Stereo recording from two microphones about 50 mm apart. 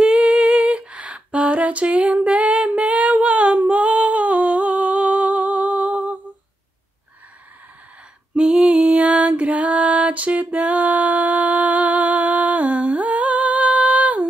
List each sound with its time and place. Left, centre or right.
0.0 s female singing: right
8.4 s music: centre